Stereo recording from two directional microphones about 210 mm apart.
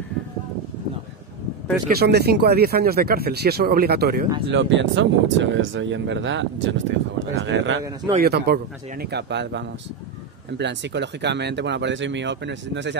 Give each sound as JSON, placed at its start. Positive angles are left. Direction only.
{"t": 2.0, "sound": "speech", "side_deg": -50}
{"t": 4.5, "sound": "speech", "side_deg": -60}
{"t": 8.2, "sound": "speech", "side_deg": -50}